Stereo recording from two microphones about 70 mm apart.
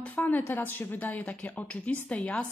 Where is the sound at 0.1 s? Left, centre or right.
Left.